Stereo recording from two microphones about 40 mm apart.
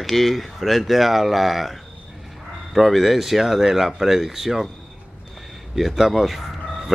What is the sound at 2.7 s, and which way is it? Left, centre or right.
Speech, centre.